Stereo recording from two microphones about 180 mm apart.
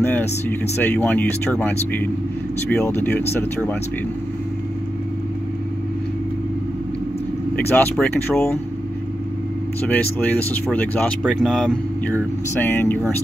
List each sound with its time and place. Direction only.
0.0 s speech: 10° left (ahead or behind)
7.7 s speech: 5° left (ahead or behind)
9.8 s speech: 10° left (ahead or behind)